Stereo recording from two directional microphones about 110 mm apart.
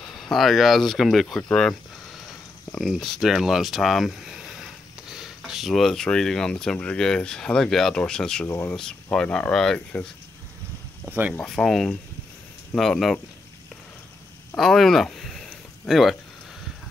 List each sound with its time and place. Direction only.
0.0 s speech: 5° left (ahead or behind)
11.1 s speech: 15° right (ahead or behind)
11.3 s speech: 5° left (ahead or behind)
14.5 s a sound: 5° left (ahead or behind)